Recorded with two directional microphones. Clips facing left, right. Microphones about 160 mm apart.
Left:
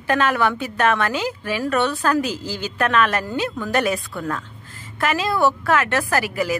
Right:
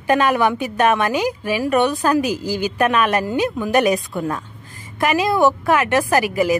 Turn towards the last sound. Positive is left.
turn(degrees=-15)  # may be behind; listen again after turning